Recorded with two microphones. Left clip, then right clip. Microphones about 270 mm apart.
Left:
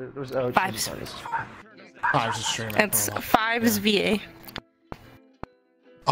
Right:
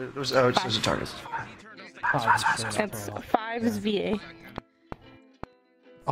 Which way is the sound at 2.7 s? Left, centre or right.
Left.